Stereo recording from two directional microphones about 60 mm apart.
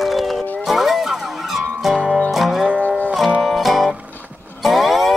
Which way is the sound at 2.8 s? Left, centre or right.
Left.